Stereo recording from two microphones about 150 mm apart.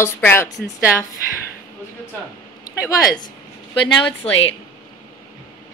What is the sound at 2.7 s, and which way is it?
Speech, 25° left (ahead or behind).